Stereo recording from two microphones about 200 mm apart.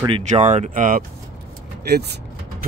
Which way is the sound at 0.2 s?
35° right (ahead or behind).